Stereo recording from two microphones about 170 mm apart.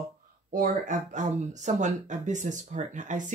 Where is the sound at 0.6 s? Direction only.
45° right (ahead or behind).